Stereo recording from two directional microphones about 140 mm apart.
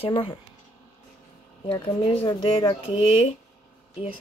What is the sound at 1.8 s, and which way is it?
Speech, 45° left (ahead or behind).